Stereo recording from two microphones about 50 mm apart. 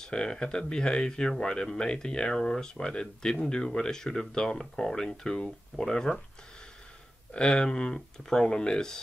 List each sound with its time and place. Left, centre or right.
0.0 s speech: centre
7.3 s speech: centre